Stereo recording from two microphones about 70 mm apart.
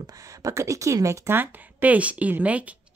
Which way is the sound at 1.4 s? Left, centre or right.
Right.